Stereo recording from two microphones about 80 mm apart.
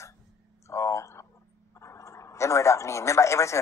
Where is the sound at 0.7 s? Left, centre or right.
Left.